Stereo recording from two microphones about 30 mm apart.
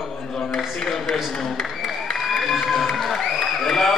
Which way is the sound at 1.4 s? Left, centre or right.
Centre.